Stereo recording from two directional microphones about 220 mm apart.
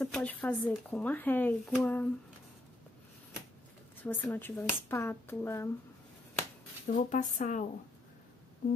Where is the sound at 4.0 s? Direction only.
10° left (ahead or behind).